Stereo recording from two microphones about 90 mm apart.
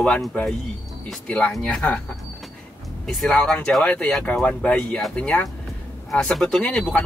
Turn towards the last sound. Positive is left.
turn(degrees=10)  # may be behind; listen again after turning